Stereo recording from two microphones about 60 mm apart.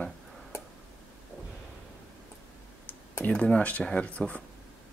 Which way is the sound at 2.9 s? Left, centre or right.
Left.